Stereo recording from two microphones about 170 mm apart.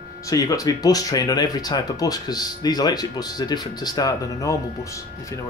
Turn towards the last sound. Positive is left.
turn(degrees=20)  # may be behind; listen again after turning